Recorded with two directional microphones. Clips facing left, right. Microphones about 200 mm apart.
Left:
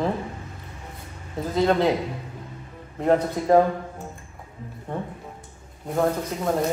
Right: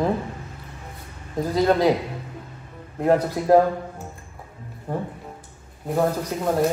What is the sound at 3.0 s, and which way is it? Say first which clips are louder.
Speech: right 1 dB; 5° right (ahead or behind).